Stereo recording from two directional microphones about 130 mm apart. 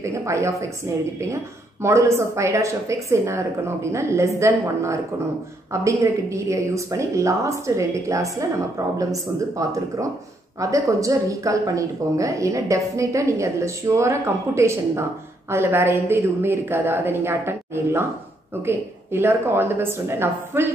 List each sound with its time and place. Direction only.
0.0 s a woman's voice: 20° right (ahead or behind)